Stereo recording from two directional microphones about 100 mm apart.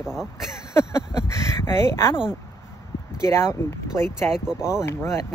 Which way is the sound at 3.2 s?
30° left (ahead or behind).